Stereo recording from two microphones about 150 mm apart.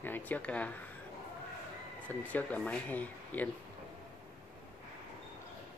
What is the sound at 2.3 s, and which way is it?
Speech, 10° left (ahead or behind).